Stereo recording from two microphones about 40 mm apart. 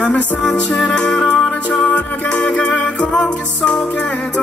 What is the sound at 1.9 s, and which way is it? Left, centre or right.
Music, left.